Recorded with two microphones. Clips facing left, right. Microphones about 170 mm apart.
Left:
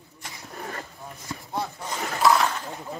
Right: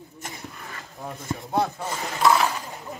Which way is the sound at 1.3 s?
60° right (ahead or behind).